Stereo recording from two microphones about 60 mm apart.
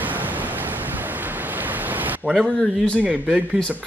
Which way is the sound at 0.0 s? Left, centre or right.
Right.